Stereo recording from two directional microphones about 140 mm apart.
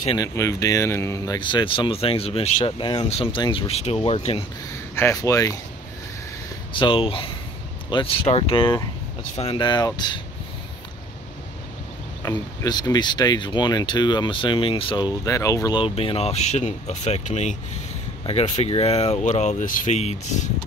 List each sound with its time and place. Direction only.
0.2 s speech: 25° left (ahead or behind); by 4.5 s 45° left (ahead or behind)
4.9 s speech: 20° left (ahead or behind)
6.7 s speech: 35° left (ahead or behind)
12.2 s speech: 25° left (ahead or behind)
15.2 s speech: 25° left (ahead or behind)
15.8 s speech: 40° left (ahead or behind)